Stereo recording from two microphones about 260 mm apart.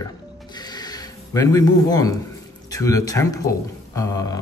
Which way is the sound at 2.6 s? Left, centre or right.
Centre.